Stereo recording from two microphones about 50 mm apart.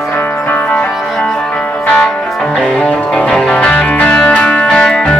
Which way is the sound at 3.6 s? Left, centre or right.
Left.